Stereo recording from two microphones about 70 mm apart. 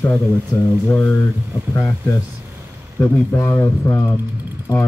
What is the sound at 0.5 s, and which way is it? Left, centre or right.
Speech, left.